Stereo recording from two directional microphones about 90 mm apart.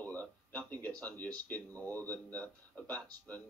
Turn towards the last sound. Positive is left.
turn(degrees=15)  # may be behind; listen again after turning